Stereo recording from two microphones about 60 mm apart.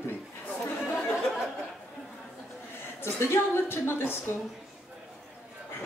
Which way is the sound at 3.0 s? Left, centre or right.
Left.